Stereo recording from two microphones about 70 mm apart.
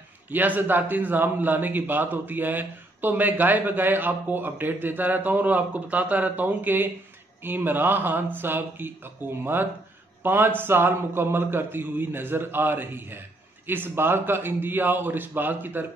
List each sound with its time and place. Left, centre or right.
0.3 s a man's voice: right